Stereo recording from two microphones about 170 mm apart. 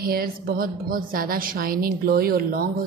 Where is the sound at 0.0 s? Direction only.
60° right (ahead or behind).